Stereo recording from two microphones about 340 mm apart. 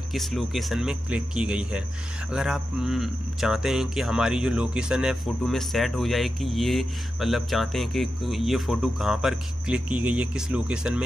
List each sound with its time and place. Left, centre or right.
0.1 s speech: centre